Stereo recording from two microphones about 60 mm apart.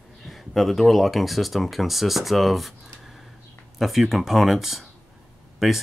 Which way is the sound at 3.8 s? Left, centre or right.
Centre.